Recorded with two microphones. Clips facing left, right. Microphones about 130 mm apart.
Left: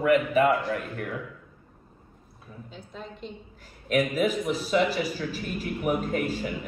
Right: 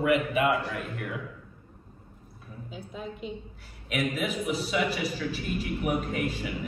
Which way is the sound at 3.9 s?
40° left (ahead or behind).